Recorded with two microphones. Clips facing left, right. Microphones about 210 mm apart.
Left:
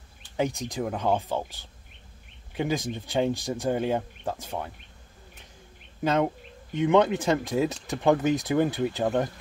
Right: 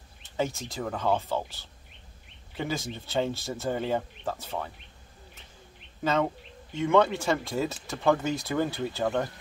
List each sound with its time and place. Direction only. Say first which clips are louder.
0.4 s speech: left 3 dB; 15° left (ahead or behind)
6.7 s speech: left 2 dB; 15° left (ahead or behind)